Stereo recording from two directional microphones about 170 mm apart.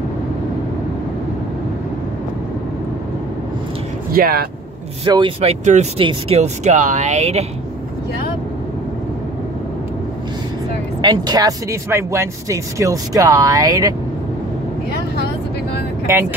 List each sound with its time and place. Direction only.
4.1 s speech: 60° right (ahead or behind)
5.0 s speech: 25° right (ahead or behind)
11.0 s speech: 25° right (ahead or behind)
16.1 s speech: 15° right (ahead or behind)